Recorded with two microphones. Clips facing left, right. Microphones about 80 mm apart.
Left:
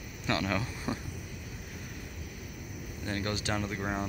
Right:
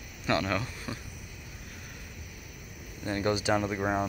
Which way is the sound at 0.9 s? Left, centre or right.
Left.